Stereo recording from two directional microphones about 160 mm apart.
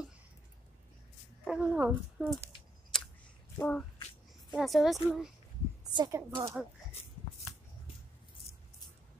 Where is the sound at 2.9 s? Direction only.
5° left (ahead or behind).